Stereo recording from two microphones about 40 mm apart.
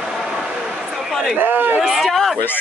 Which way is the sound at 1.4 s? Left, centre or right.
Right.